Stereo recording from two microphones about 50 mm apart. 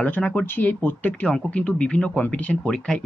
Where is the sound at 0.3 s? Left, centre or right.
Left.